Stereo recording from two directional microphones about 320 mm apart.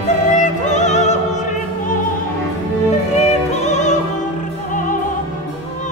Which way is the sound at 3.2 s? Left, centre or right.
Left.